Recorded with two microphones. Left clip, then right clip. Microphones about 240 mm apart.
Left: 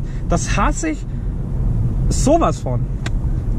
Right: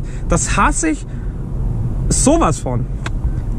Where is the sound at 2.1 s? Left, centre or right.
Right.